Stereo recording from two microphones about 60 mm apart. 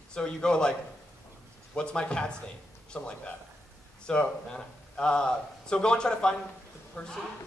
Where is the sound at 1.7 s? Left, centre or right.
Centre.